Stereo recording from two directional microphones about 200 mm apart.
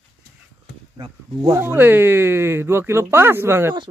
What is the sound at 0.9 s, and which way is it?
Speech, 20° right (ahead or behind).